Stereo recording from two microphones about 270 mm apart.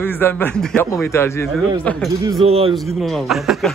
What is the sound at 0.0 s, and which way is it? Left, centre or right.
Speech, centre.